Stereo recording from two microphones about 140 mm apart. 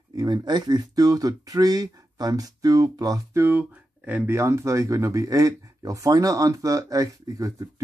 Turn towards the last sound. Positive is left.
turn(degrees=-25)  # may be behind; listen again after turning